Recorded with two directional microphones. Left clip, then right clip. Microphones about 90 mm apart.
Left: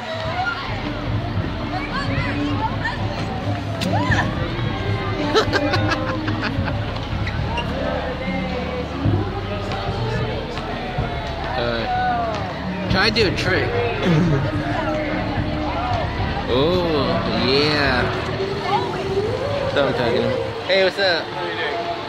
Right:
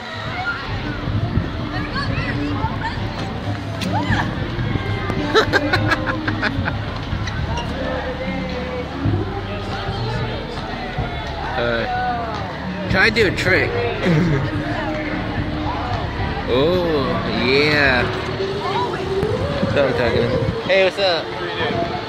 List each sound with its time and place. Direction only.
5.3 s music: 20° right (ahead or behind)
11.5 s music: 10° right (ahead or behind)
12.9 s speech: 5° right (ahead or behind)
13.4 s speech: 20° right (ahead or behind)
16.4 s a sound: centre (ahead or behind)
20.6 s speech: 15° left (ahead or behind)